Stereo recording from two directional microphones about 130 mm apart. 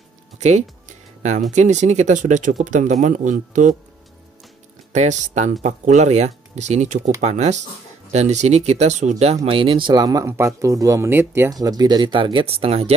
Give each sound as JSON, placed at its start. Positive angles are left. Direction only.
{"t": 0.4, "sound": "speech", "side_deg": -60}
{"t": 4.9, "sound": "speech", "side_deg": -65}
{"t": 11.5, "sound": "speech", "side_deg": -30}